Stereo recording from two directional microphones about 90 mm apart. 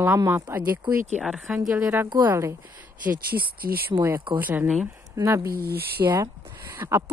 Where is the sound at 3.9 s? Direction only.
75° right (ahead or behind).